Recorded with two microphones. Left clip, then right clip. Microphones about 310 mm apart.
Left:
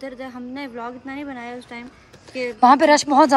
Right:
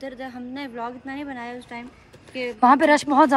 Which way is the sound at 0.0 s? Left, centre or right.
Centre.